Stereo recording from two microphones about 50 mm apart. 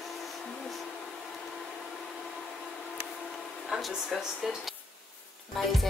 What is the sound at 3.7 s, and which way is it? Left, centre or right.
Speech, centre.